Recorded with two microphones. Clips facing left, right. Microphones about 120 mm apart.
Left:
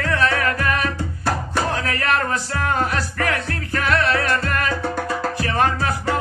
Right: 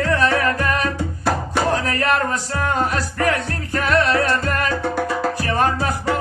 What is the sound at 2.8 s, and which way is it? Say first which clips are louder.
Music: right 2 dB; 30° right (ahead or behind).